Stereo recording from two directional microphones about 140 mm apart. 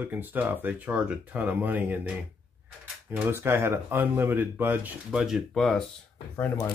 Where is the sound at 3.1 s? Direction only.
15° right (ahead or behind).